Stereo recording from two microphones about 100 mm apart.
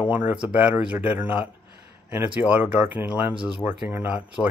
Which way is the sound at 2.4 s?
20° right (ahead or behind).